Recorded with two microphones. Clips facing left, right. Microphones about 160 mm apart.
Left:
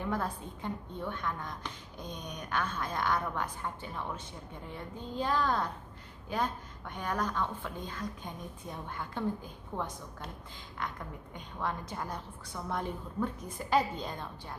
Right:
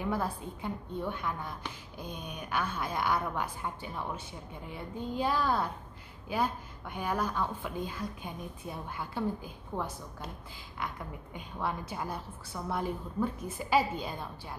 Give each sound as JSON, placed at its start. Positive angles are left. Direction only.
{"t": 0.0, "sound": "a woman's voice", "side_deg": -5}